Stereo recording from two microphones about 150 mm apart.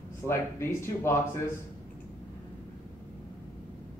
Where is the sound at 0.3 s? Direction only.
15° left (ahead or behind).